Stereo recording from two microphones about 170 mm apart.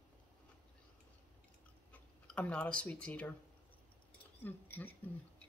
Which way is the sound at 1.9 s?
10° left (ahead or behind).